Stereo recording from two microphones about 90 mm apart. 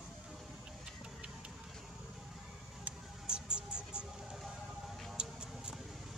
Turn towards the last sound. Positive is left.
turn(degrees=-10)  # may be behind; listen again after turning